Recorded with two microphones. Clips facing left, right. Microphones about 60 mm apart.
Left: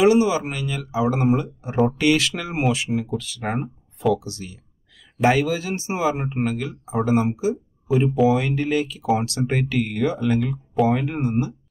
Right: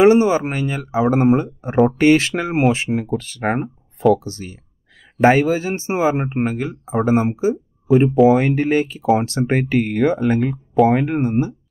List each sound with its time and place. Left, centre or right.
0.0 s speech: right